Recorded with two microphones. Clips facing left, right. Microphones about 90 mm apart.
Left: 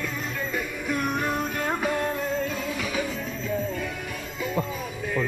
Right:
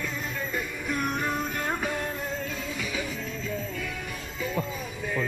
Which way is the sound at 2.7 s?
20° left (ahead or behind).